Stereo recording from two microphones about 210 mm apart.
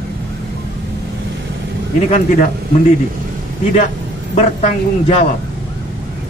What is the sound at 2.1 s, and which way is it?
Speech, 35° left (ahead or behind).